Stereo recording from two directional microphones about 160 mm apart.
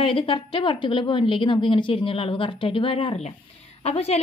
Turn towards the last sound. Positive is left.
turn(degrees=40)  # may be behind; listen again after turning